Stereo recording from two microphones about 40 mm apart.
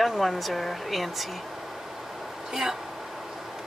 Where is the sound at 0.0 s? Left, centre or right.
Centre.